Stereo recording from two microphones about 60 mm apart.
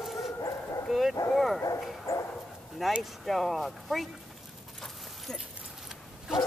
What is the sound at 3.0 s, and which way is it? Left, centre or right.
Speech, centre.